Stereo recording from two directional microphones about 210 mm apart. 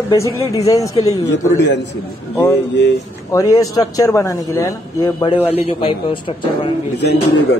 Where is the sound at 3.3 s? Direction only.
15° left (ahead or behind).